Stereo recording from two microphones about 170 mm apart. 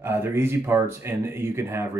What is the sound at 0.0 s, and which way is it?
Speech, 15° right (ahead or behind).